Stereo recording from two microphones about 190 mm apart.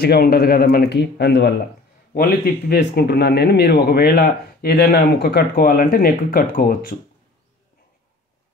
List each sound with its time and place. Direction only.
0.0 s speech: 55° left (ahead or behind)